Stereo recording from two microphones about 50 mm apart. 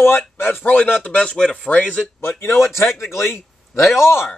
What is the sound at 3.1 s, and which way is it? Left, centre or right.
A man's voice, left.